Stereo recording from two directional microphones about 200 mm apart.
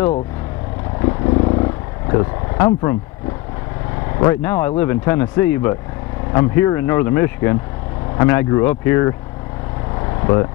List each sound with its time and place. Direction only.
1.0 s vehicle: 25° left (ahead or behind)
4.2 s speech: 10° left (ahead or behind)
10.2 s speech: 20° left (ahead or behind)